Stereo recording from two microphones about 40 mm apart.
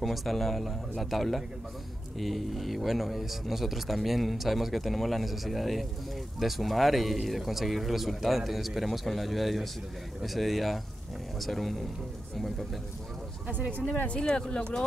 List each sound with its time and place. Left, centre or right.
0.0 s speech: centre
13.5 s speech: right
14.0 s speech: left